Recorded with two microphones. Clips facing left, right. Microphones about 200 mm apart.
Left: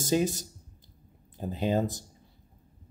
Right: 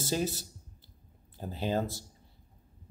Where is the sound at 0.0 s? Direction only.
15° left (ahead or behind).